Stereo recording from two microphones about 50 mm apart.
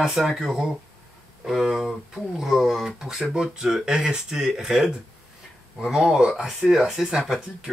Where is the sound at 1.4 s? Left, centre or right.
Centre.